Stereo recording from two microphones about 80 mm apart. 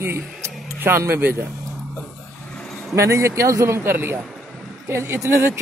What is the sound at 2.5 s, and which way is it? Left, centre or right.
Vehicle, centre.